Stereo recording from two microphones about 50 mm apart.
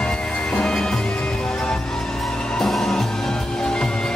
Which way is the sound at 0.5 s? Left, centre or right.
Centre.